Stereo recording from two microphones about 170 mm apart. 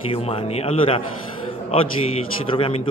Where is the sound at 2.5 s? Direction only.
35° left (ahead or behind).